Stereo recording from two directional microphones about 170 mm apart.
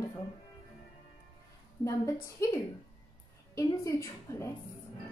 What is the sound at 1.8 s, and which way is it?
Speech, 15° left (ahead or behind).